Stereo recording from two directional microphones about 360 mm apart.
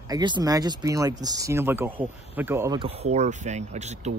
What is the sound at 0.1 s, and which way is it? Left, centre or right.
Speech, centre.